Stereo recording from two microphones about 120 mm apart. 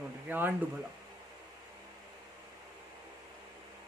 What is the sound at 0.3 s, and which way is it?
Speech, 15° right (ahead or behind).